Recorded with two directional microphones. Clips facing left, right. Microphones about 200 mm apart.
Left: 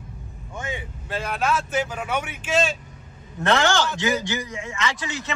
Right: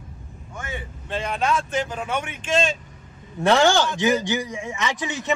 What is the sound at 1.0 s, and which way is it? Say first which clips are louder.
Speech: right 1 dB; 5° left (ahead or behind).